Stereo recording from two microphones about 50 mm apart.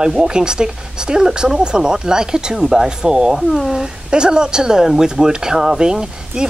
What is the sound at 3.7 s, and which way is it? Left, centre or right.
Speech, centre.